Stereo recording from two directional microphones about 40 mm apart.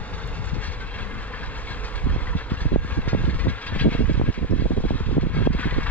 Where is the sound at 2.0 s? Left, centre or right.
Left.